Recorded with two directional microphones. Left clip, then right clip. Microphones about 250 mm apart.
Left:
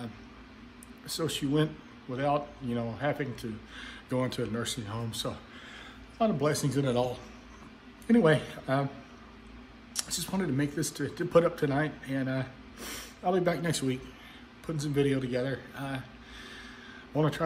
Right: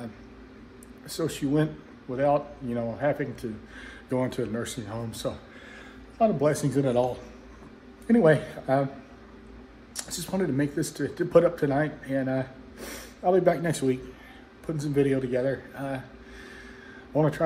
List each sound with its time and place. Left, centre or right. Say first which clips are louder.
1.2 s speech: right 3 dB; left
8.1 s speech: right 4 dB; left
10.2 s speech: right 6 dB; centre
14.7 s a man's voice: right 4 dB; centre
15.0 s speech: right 5 dB; left